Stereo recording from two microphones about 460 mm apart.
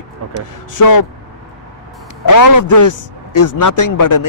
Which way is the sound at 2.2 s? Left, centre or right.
Left.